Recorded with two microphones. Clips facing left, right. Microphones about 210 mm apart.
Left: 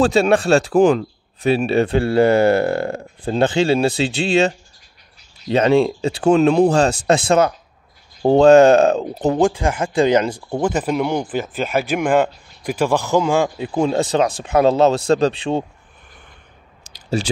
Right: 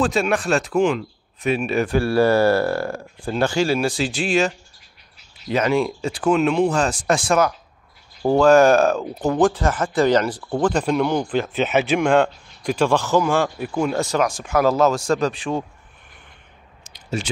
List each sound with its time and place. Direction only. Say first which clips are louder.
0.0 s speech: left 5 dB; 25° left (ahead or behind)
9.4 s speech: right 2 dB; 10° left (ahead or behind)
10.6 s speech: even; 5° left (ahead or behind); by 15.6 s 25° left (ahead or behind)
16.9 s a sound: left 5 dB; 35° left (ahead or behind)